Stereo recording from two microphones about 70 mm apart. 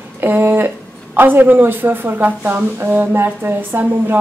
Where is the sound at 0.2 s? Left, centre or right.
Right.